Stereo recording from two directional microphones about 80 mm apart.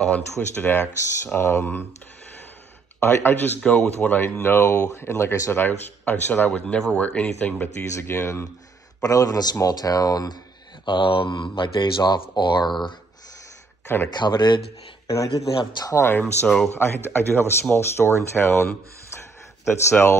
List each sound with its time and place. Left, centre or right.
0.1 s speech: left
3.0 s speech: left; by 4.2 s centre
4.4 s speech: left
5.6 s speech: left
7.9 s speech: left
9.0 s speech: left
10.9 s speech: left
11.8 s speech: left
13.8 s speech: left
14.1 s speech: left
15.0 s speech: left